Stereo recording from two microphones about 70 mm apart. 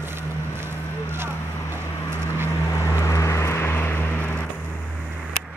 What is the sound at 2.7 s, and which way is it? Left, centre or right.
Vehicle, left.